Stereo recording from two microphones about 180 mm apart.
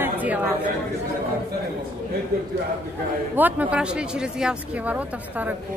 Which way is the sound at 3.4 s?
10° right (ahead or behind).